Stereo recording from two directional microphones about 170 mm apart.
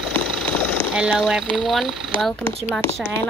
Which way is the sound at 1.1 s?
5° right (ahead or behind).